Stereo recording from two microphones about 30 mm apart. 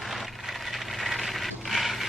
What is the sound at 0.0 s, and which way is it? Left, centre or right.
Wood, centre.